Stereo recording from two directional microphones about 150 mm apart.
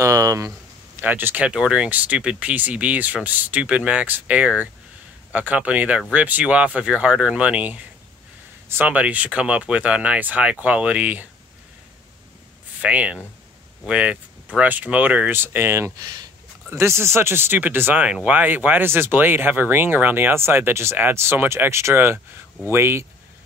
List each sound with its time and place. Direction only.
0.0 s a sound: 20° right (ahead or behind)
1.0 s speech: 10° right (ahead or behind)
12.8 s speech: 10° right (ahead or behind)